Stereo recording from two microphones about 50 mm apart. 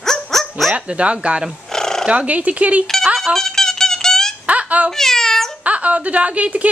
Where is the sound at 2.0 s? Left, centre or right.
Right.